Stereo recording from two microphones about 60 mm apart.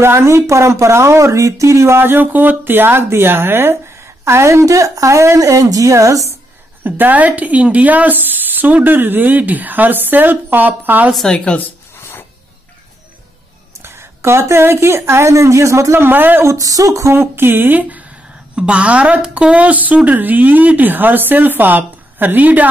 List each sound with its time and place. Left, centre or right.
0.0 s speech: right
4.2 s speech: right
6.8 s speech: right
11.3 s speech: left
12.0 s a sound: left
13.8 s speech: right
16.4 s speech: right
17.1 s speech: right